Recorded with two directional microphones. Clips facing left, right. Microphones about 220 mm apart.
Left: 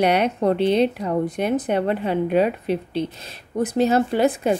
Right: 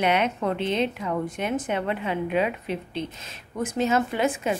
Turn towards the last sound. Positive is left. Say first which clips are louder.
# left 6 dB
turn(degrees=35)  # may be behind; listen again after turning